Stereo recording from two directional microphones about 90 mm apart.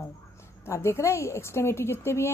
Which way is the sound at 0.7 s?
30° left (ahead or behind).